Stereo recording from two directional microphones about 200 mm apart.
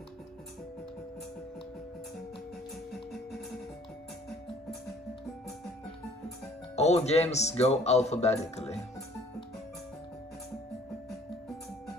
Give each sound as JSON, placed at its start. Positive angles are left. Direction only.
{"t": 2.9, "sound": "music", "side_deg": 0}
{"t": 6.7, "sound": "speech", "side_deg": 35}